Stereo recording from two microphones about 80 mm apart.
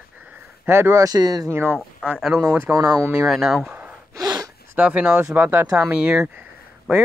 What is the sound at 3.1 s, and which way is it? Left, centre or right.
Speech, centre.